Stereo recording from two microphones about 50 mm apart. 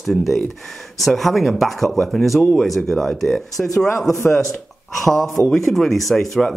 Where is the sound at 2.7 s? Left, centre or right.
Centre.